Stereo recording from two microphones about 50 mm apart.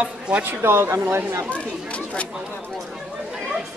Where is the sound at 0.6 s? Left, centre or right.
Right.